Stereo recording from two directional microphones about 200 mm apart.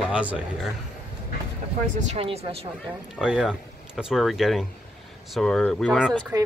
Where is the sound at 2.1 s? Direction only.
30° right (ahead or behind).